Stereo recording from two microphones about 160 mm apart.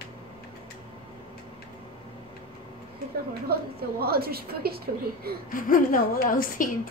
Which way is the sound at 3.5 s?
75° right (ahead or behind).